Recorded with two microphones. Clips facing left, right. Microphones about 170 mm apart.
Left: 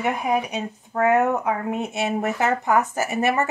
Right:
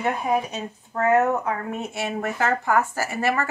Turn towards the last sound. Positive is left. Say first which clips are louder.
# left 2 dB
turn(degrees=20)  # may be behind; listen again after turning